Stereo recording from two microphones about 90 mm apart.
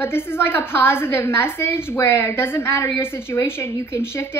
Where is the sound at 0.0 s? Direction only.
25° left (ahead or behind).